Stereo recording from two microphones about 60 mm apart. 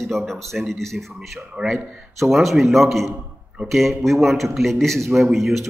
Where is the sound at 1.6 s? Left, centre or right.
Centre.